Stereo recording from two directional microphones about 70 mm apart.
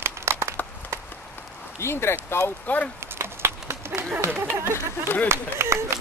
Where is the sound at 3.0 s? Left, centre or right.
Right.